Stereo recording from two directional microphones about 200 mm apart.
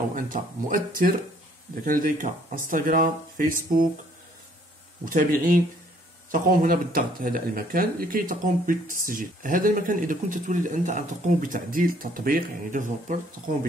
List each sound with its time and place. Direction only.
0.1 s speech: 45° right (ahead or behind)
5.0 s speech: 45° right (ahead or behind)